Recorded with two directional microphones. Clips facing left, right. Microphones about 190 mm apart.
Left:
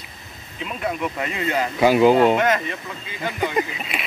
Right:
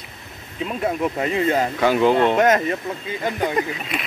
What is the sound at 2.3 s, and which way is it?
Speech, 45° right (ahead or behind).